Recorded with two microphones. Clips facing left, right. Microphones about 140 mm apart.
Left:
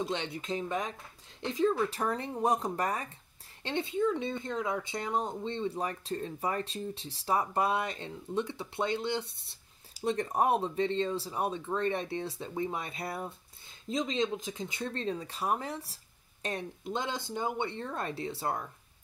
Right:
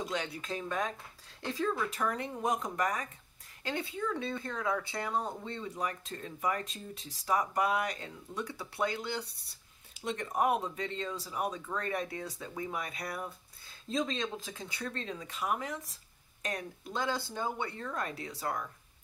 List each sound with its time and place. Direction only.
0.0 s speech: 25° left (ahead or behind)
9.9 s speech: 35° left (ahead or behind)